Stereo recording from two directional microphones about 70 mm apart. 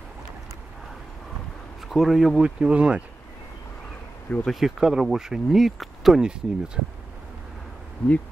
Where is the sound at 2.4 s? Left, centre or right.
Centre.